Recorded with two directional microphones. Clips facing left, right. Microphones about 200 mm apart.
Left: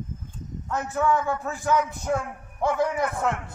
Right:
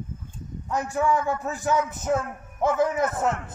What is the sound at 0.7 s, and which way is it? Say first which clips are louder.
A man's voice: even; 15° right (ahead or behind).